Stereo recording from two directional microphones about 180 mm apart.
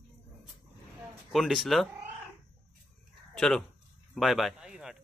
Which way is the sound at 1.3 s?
Centre (ahead or behind).